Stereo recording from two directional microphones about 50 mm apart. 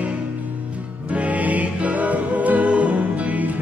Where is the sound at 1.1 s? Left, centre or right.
Right.